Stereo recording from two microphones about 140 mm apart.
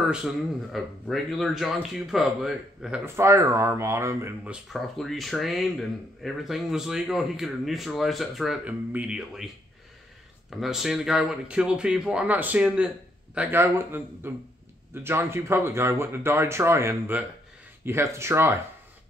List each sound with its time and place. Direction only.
0.1 s speech: centre (ahead or behind)
3.2 s speech: 20° right (ahead or behind)
4.5 s speech: centre (ahead or behind)
10.5 s speech: centre (ahead or behind); by 18.6 s 15° right (ahead or behind)